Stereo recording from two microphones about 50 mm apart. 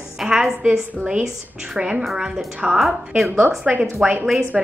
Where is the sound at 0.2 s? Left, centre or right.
Centre.